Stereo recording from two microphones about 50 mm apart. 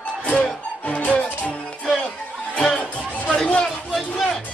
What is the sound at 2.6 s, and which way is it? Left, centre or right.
Music, centre.